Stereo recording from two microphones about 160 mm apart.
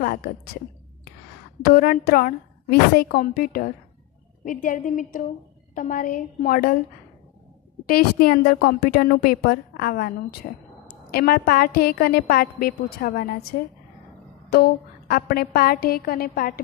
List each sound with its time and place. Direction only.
0.0 s a woman's voice: 60° left (ahead or behind)
1.7 s a woman's voice: 65° left (ahead or behind)
7.8 s a woman's voice: 65° left (ahead or behind)
10.4 s a woman's voice: 60° left (ahead or behind)
11.1 s a woman's voice: 70° left (ahead or behind)